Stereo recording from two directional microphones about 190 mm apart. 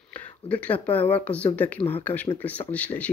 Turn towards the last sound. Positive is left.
turn(degrees=5)  # may be behind; listen again after turning